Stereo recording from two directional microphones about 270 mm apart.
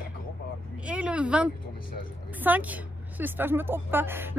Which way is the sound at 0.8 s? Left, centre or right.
Centre.